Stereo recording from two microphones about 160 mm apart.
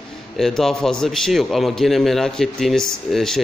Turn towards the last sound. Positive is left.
turn(degrees=0)  # may be behind; listen again after turning